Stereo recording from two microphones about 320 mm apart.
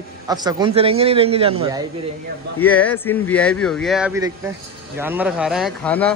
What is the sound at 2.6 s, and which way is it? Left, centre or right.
Speech, centre.